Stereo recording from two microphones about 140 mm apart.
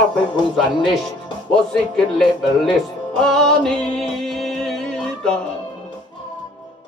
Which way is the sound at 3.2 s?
5° left (ahead or behind).